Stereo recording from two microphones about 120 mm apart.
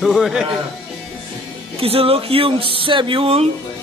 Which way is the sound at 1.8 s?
50° right (ahead or behind).